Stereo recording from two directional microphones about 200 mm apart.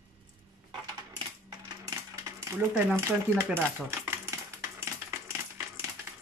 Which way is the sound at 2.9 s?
10° right (ahead or behind).